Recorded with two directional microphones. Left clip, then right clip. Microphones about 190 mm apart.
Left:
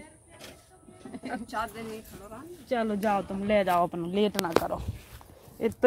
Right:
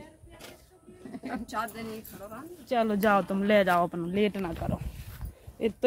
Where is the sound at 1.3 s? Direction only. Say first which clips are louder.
Left 1 dB; 30° right (ahead or behind).